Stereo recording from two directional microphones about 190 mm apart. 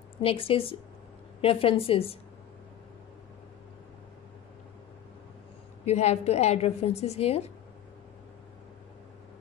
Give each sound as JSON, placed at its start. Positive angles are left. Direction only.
{"t": 0.2, "sound": "a woman's voice", "side_deg": 30}
{"t": 5.9, "sound": "a woman's voice", "side_deg": 35}